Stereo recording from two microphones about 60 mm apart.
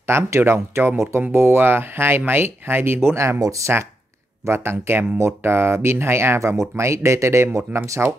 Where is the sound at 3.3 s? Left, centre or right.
Right.